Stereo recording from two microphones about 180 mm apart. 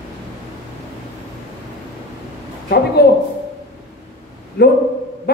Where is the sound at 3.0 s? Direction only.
60° left (ahead or behind).